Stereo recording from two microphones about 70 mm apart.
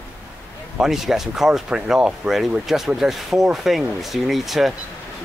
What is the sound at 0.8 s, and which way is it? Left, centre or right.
Speech, centre.